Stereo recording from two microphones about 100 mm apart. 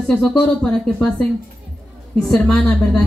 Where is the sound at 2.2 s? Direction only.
5° left (ahead or behind).